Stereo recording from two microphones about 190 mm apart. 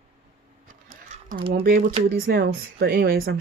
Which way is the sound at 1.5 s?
55° right (ahead or behind).